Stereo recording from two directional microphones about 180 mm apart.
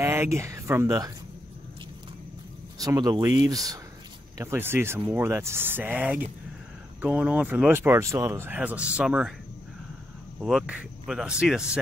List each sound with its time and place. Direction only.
0.0 s speech: 15° right (ahead or behind)
2.8 s speech: 20° right (ahead or behind)
10.4 s speech: 5° right (ahead or behind)